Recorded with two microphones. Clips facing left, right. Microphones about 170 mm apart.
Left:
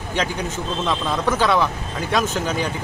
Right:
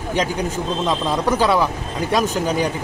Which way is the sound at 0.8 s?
15° right (ahead or behind).